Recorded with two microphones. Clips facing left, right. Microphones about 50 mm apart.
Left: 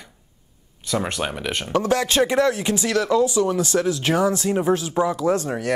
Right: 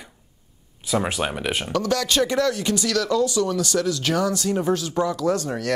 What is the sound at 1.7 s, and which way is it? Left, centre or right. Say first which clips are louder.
Speech: left 3 dB; left.